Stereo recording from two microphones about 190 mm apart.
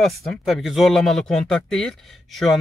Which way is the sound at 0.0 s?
Centre (ahead or behind).